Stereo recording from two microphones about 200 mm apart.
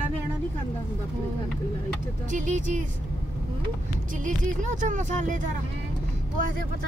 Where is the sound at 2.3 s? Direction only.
40° right (ahead or behind).